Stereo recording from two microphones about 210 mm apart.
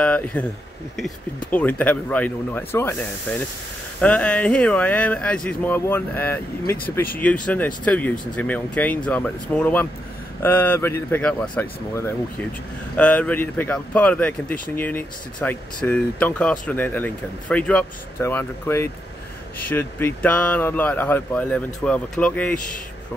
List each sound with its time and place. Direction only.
0.0 s speech: 10° left (ahead or behind)
7.4 s speech: 5° left (ahead or behind)